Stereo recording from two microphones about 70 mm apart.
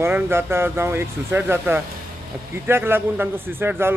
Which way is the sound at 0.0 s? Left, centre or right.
Right.